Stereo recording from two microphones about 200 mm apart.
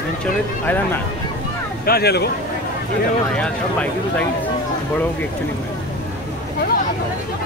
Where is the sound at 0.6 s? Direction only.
10° left (ahead or behind).